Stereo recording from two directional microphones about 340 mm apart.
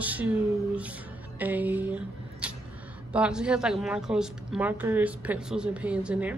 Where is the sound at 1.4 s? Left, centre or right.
Centre.